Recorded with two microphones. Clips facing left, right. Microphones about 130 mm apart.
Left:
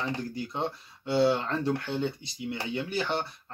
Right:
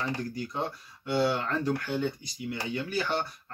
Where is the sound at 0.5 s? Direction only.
25° left (ahead or behind).